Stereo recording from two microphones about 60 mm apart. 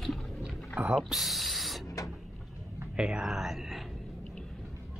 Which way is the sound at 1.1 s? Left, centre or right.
Centre.